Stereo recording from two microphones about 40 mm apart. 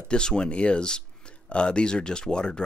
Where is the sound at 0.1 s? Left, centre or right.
Centre.